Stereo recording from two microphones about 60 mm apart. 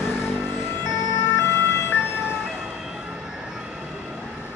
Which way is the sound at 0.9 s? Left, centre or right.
Left.